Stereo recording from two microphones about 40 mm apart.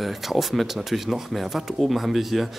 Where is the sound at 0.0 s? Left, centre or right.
Centre.